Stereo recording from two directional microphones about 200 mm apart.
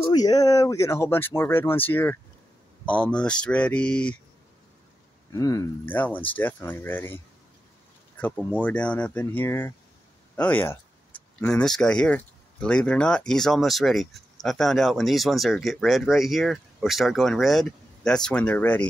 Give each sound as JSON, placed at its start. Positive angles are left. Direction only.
{"t": 0.1, "sound": "speech", "side_deg": 20}
{"t": 5.3, "sound": "speech", "side_deg": 15}
{"t": 8.2, "sound": "speech", "side_deg": 5}